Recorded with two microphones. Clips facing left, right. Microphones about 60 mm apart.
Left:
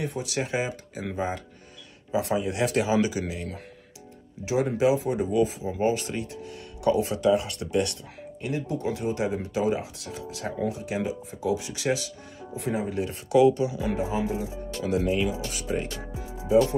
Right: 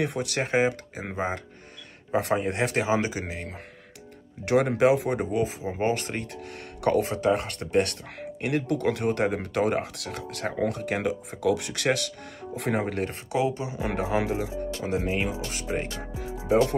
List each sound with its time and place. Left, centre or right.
0.0 s speech: right
2.0 s speech: right
4.5 s speech: right
7.0 s speech: right
13.3 s speech: right
13.7 s speech: right
14.8 s speech: right